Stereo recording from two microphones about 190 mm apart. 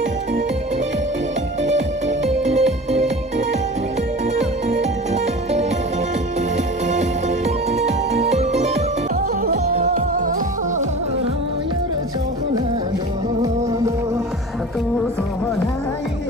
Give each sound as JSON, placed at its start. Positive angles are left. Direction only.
{"t": 1.6, "sound": "music", "side_deg": -40}
{"t": 6.9, "sound": "music", "side_deg": -40}
{"t": 9.5, "sound": "music", "side_deg": -50}